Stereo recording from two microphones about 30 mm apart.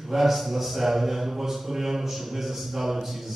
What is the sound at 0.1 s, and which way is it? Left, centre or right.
A man's voice, centre.